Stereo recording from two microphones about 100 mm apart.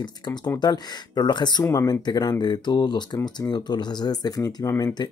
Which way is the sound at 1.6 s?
35° left (ahead or behind).